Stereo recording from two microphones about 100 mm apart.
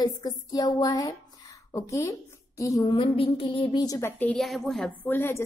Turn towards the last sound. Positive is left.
turn(degrees=25)  # may be behind; listen again after turning